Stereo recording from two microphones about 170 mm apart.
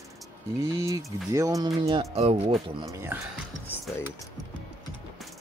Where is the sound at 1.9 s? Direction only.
35° right (ahead or behind).